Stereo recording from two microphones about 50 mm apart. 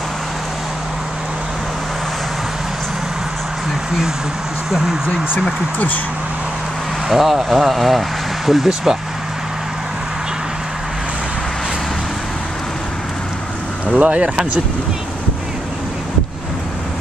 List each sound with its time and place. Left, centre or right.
4.6 s speech: centre
7.1 s speech: centre
13.9 s speech: right